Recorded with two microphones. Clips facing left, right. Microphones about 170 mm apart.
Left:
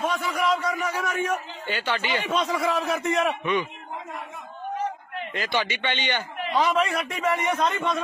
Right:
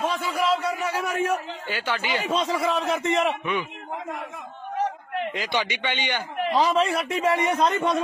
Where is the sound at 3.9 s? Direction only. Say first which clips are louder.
Right 6 dB; 90° right.